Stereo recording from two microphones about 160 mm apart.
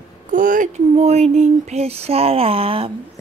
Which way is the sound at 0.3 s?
55° right (ahead or behind).